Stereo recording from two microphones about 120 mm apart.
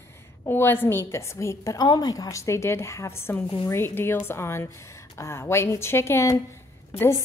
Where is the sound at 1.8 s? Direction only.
35° left (ahead or behind).